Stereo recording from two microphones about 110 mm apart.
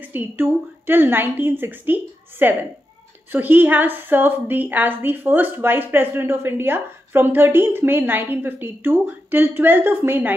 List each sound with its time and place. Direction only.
0.1 s a woman's voice: 15° right (ahead or behind)